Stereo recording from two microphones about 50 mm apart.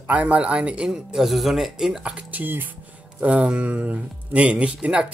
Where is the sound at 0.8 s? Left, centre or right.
Centre.